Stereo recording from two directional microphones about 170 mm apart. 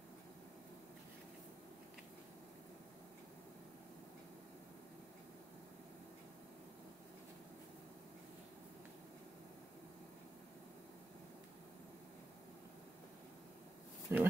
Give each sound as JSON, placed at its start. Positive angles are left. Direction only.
{"t": 14.1, "sound": "speech", "side_deg": -15}